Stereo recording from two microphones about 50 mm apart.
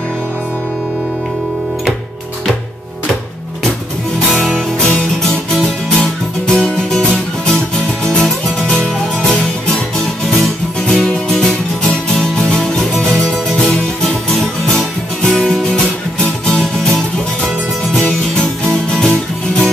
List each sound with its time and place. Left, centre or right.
4.3 s music: centre
4.6 s music: centre